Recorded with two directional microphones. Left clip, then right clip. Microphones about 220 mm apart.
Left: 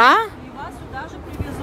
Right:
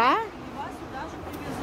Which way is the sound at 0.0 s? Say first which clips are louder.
Left 9 dB; 30° left (ahead or behind).